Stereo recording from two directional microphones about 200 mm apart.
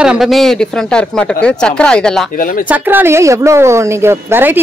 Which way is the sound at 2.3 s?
45° left (ahead or behind).